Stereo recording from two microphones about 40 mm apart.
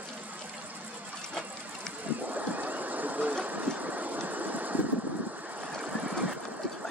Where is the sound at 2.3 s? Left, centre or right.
Right.